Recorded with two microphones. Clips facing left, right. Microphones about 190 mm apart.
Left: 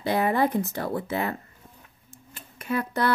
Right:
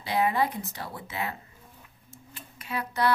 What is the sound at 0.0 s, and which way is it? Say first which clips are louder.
Speech: left 3 dB; 50° left (ahead or behind).